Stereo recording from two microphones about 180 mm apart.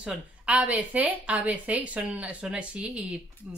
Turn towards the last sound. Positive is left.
turn(degrees=-5)  # may be behind; listen again after turning